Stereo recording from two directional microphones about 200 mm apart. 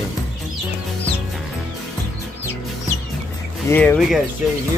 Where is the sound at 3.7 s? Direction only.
10° left (ahead or behind).